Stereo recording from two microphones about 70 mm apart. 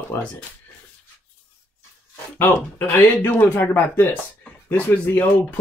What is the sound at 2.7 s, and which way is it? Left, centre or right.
Speech, left.